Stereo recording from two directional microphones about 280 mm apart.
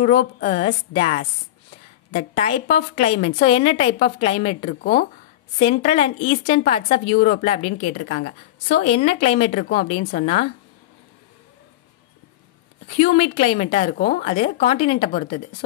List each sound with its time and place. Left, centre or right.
0.0 s a woman's voice: left
5.6 s a woman's voice: left
12.9 s a woman's voice: left
14.7 s a woman's voice: left